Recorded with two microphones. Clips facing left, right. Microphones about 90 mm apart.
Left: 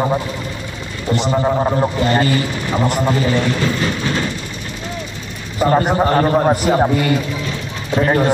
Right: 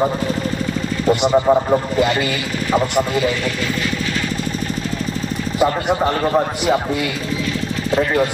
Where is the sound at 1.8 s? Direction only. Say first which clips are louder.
Left 2 dB; 40° left (ahead or behind).